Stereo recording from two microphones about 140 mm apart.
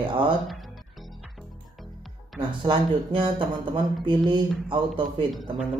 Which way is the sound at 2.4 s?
35° right (ahead or behind).